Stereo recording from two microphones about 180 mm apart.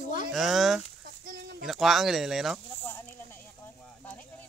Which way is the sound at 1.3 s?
65° right (ahead or behind).